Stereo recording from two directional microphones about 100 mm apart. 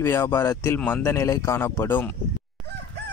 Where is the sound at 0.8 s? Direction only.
10° left (ahead or behind).